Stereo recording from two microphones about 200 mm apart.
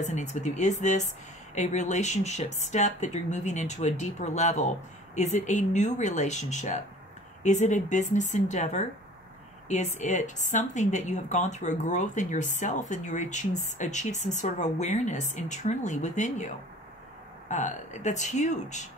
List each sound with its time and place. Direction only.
0.0 s a woman's voice: 35° left (ahead or behind)
17.5 s a woman's voice: 35° left (ahead or behind)